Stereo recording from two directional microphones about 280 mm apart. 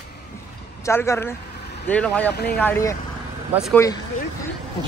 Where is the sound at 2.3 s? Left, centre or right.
Left.